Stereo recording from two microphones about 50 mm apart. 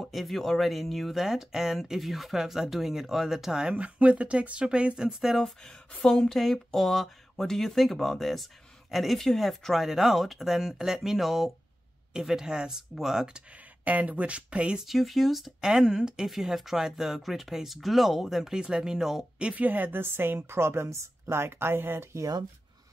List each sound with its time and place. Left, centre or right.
0.0 s speech: centre
1.2 s speech: centre
3.7 s speech: right
5.4 s speech: centre
13.5 s speech: right
14.9 s speech: centre
19.3 s speech: right
19.6 s a woman's voice: right
20.0 s a woman's voice: right
21.3 s speech: right